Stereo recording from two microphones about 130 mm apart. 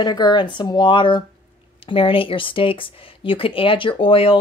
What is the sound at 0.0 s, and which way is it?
Speech, 35° left (ahead or behind).